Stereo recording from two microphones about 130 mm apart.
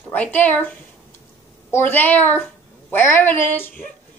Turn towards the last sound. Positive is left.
turn(degrees=15)  # may be behind; listen again after turning